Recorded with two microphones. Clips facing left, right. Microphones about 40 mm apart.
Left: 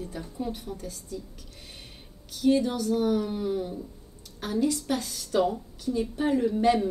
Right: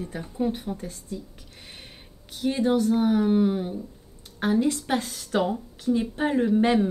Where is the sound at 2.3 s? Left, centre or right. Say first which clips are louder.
Right 1 dB; right.